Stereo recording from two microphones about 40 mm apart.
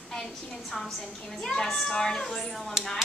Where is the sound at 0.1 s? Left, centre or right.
Centre.